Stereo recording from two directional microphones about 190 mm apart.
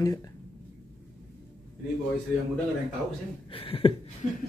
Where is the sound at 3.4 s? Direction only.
30° left (ahead or behind).